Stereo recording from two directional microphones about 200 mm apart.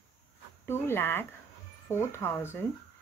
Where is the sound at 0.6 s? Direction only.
10° left (ahead or behind).